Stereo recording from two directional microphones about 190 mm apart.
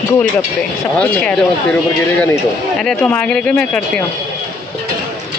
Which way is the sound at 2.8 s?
5° left (ahead or behind).